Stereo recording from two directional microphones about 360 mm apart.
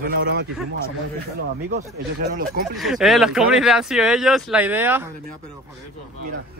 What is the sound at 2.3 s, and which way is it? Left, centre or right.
Speech, right.